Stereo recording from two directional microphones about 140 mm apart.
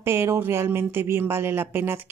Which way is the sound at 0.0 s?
20° right (ahead or behind).